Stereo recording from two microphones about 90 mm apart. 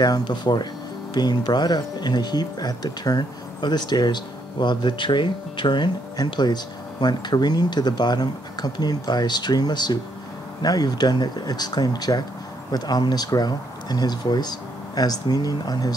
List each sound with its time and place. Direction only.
0.0 s speech: 55° left (ahead or behind)